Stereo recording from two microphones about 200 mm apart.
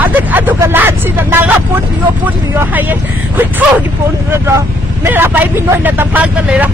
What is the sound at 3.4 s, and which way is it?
Speech, 10° right (ahead or behind).